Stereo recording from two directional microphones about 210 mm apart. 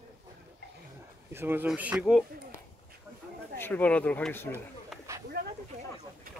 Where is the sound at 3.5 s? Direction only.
10° left (ahead or behind).